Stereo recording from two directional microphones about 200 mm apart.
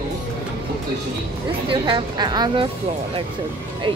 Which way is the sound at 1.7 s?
25° right (ahead or behind).